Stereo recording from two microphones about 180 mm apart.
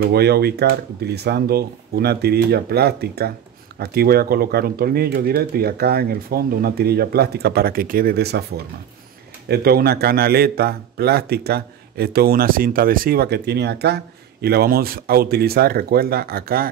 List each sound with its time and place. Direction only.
0.1 s speech: 60° right (ahead or behind)
9.5 s speech: 60° right (ahead or behind)